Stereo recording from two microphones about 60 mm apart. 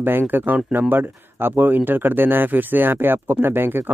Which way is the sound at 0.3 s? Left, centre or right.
Right.